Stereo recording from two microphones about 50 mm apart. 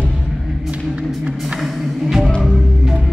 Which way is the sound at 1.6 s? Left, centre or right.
Centre.